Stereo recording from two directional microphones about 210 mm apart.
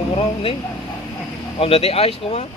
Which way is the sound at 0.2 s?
25° left (ahead or behind).